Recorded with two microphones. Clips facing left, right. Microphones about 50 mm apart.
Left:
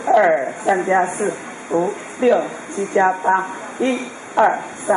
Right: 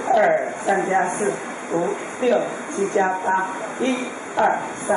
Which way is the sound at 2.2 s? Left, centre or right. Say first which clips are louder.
Left 4 dB; centre.